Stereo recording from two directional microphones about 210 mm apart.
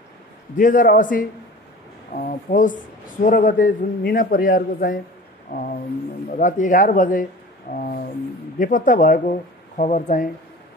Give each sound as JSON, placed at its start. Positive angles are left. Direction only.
{"t": 0.6, "sound": "speech", "side_deg": 40}